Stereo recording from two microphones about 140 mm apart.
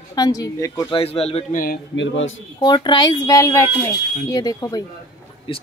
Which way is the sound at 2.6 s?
30° left (ahead or behind).